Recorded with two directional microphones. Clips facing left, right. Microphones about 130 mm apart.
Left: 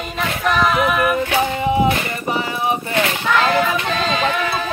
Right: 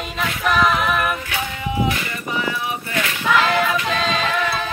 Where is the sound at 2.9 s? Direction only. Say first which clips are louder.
Left 5 dB; 30° left (ahead or behind).